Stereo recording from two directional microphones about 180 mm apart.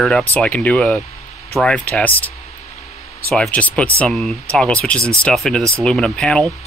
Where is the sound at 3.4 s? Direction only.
10° left (ahead or behind).